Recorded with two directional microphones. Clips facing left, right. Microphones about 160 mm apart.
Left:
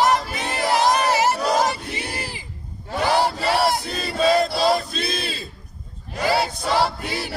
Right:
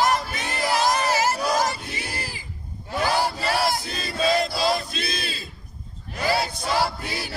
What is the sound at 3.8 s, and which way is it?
Crowd, 35° left (ahead or behind).